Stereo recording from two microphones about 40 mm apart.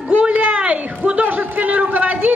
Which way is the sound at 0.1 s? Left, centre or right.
Right.